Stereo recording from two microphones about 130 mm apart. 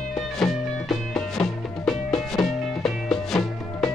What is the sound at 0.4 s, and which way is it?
Music, 5° left (ahead or behind).